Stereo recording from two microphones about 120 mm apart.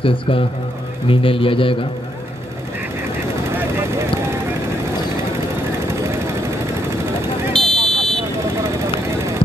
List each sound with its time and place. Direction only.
0.0 s speech: 50° left (ahead or behind)
3.5 s vehicle: 20° right (ahead or behind)
6.0 s vehicle: 25° right (ahead or behind)
7.5 s a sound: 5° left (ahead or behind)